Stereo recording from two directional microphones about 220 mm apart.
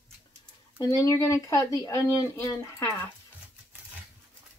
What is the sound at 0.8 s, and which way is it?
Speech, 15° left (ahead or behind).